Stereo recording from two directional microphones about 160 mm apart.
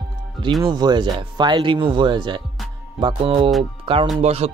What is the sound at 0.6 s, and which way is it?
Speech, 25° right (ahead or behind).